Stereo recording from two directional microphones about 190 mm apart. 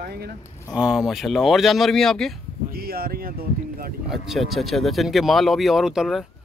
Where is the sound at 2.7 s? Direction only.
50° right (ahead or behind).